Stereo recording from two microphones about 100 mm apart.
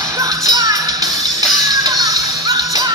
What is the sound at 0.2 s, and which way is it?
Music, 35° right (ahead or behind).